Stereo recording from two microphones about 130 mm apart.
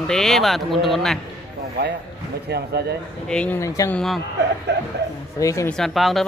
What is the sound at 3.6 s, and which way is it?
Speech, 25° left (ahead or behind).